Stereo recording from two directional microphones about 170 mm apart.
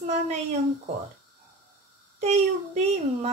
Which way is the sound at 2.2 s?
40° right (ahead or behind).